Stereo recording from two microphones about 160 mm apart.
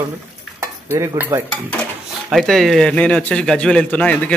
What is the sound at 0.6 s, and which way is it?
Stir, 20° right (ahead or behind).